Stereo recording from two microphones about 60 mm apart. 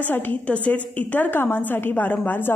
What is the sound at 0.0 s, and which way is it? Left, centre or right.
A woman's voice, left.